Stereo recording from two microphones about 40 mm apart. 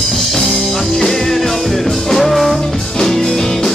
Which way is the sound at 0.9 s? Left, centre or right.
Centre.